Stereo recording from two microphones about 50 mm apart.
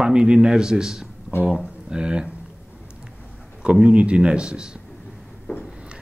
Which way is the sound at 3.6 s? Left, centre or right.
Right.